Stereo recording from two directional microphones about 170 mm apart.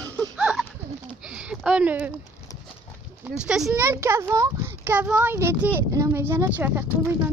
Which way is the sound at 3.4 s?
5° right (ahead or behind).